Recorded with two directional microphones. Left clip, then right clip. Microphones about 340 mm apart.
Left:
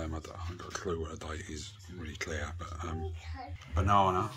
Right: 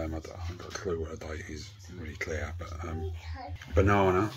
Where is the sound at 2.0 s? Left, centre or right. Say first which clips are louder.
Right 3 dB; centre.